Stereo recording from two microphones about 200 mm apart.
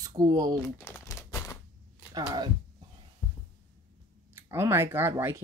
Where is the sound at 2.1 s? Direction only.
20° right (ahead or behind).